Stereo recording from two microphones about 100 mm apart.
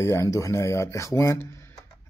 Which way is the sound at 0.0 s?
30° left (ahead or behind).